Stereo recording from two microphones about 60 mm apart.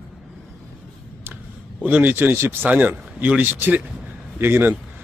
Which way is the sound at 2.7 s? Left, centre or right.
Right.